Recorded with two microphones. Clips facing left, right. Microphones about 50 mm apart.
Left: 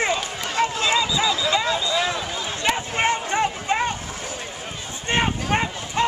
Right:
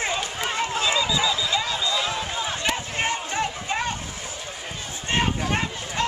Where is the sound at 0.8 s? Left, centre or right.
Centre.